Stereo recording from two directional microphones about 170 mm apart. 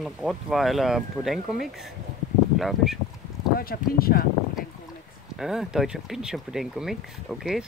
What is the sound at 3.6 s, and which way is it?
Speech, 60° left (ahead or behind).